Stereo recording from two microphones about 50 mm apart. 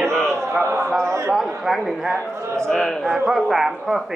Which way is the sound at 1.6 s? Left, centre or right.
Centre.